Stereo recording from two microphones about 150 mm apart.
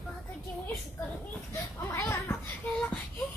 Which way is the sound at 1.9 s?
20° left (ahead or behind).